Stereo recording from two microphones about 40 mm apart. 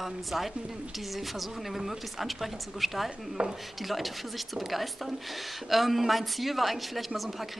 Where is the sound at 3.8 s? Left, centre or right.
Centre.